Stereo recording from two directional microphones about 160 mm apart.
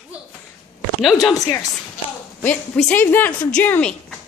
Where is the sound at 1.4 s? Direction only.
20° left (ahead or behind).